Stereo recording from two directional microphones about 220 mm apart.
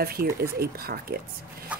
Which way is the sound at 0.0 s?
45° right (ahead or behind).